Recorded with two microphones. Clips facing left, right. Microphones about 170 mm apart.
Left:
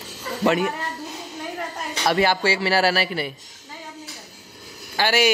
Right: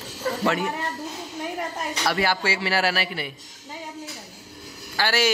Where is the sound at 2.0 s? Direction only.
20° left (ahead or behind).